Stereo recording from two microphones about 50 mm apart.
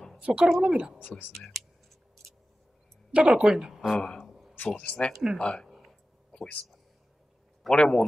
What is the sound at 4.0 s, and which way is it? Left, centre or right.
Speech, centre.